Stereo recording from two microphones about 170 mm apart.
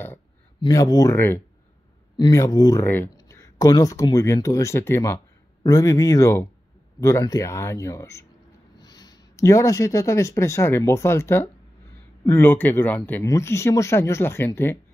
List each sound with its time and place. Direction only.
0.6 s speech: 20° left (ahead or behind)